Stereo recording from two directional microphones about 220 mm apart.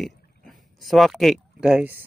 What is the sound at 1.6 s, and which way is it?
Speech, 5° right (ahead or behind).